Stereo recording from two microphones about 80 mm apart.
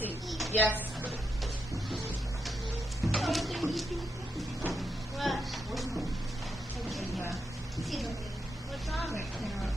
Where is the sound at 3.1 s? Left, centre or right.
Centre.